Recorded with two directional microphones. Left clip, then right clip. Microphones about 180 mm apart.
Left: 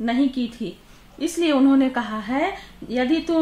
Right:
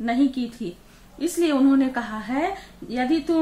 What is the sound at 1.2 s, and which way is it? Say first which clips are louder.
A woman's voice: left 1 dB; 50° left (ahead or behind).